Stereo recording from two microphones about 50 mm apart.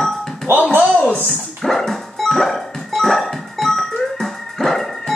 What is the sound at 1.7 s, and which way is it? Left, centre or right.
Dog, centre.